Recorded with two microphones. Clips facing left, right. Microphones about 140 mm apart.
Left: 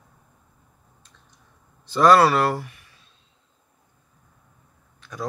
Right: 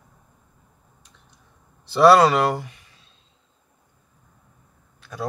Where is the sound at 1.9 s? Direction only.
15° right (ahead or behind).